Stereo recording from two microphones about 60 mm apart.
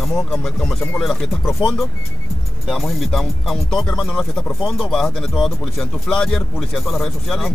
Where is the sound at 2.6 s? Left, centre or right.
Centre.